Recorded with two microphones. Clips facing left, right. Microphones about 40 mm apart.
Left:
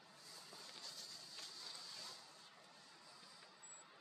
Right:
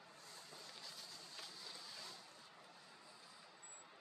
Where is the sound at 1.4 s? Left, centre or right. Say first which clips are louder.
Right 1 dB; centre.